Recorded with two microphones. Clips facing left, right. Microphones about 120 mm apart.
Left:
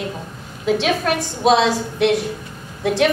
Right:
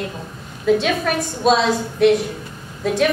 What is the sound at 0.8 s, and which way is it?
Speech, 85° left.